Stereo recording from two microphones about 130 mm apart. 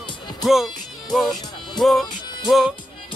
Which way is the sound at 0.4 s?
Centre (ahead or behind).